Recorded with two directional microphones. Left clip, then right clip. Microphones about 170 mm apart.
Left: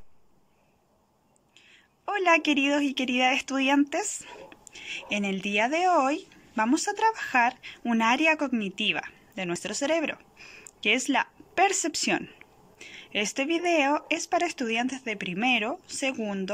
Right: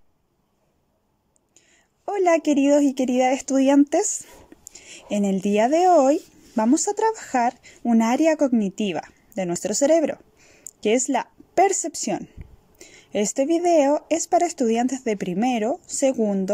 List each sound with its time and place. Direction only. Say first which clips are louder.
2.0 s speech: right 3 dB; 40° right (ahead or behind)
12.7 s speech: right 4 dB; 50° right (ahead or behind); by 16.4 s 35° right (ahead or behind)